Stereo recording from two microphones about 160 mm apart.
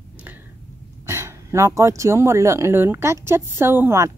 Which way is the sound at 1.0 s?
15° right (ahead or behind).